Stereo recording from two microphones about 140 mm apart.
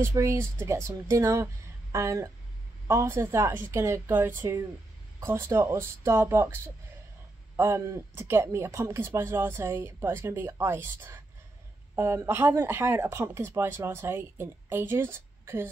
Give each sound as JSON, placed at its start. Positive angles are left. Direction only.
{"t": 0.0, "sound": "speech", "side_deg": -20}